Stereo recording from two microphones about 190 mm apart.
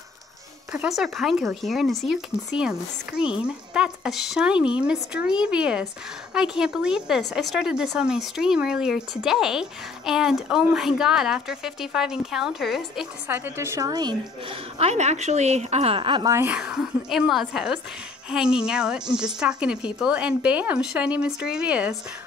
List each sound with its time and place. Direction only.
0.7 s speech: 5° right (ahead or behind); by 14.6 s 20° right (ahead or behind)
14.8 s a woman's voice: 35° right (ahead or behind)
16.3 s speech: 5° right (ahead or behind)